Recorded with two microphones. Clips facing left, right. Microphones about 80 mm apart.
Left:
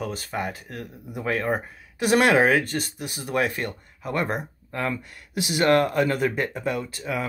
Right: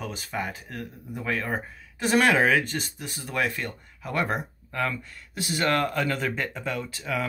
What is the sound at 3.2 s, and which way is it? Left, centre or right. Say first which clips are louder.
Speech: left 3 dB; left.